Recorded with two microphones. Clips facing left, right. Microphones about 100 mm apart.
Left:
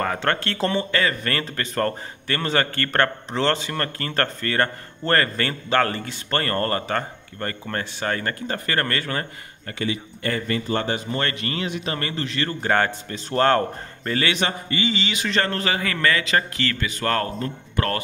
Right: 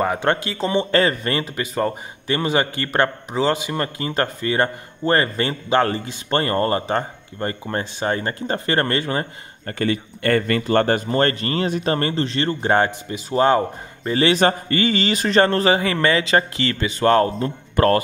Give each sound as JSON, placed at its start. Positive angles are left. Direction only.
{"t": 0.0, "sound": "speech", "side_deg": -15}
{"t": 0.9, "sound": "a man's voice", "side_deg": -30}
{"t": 1.4, "sound": "a man's voice", "side_deg": -10}
{"t": 9.7, "sound": "a man's voice", "side_deg": -50}
{"t": 13.1, "sound": "speech", "side_deg": -10}
{"t": 14.1, "sound": "a man's voice", "side_deg": -35}
{"t": 17.4, "sound": "a man's voice", "side_deg": -40}